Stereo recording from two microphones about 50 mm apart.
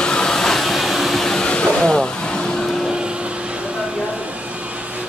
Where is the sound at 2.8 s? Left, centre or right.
Centre.